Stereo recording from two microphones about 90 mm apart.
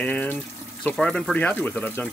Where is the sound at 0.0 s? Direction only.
15° left (ahead or behind).